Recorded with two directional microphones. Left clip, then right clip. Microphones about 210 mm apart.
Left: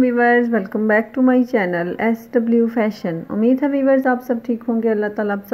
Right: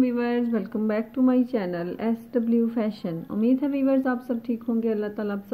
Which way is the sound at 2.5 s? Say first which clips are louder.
Left 9 dB; 50° left (ahead or behind).